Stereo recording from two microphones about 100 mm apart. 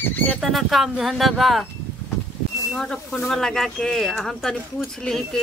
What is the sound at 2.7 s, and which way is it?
Speech, 5° left (ahead or behind).